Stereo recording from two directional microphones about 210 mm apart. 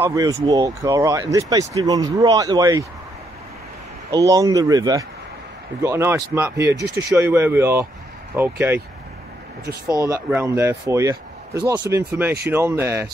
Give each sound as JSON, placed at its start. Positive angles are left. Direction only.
{"t": 0.0, "sound": "speech", "side_deg": -15}
{"t": 4.1, "sound": "speech", "side_deg": -15}
{"t": 10.0, "sound": "speech", "side_deg": -15}